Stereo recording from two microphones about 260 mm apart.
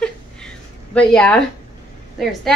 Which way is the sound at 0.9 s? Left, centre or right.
Centre.